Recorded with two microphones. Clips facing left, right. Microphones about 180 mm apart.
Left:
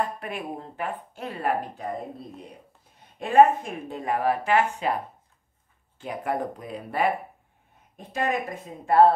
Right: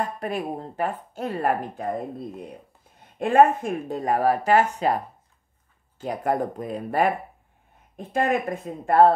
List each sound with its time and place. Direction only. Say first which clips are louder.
0.2 s speech: right 5 dB; 40° right (ahead or behind)
3.2 s speech: even; 50° right (ahead or behind)
5.9 s speech: right 4 dB; 40° right (ahead or behind)
8.1 s speech: right 4 dB; 55° right (ahead or behind)